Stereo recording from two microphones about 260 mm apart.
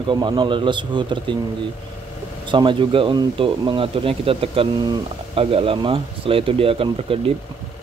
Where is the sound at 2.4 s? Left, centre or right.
Centre.